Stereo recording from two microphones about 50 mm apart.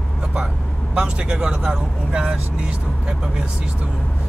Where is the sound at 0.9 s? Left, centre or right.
Centre.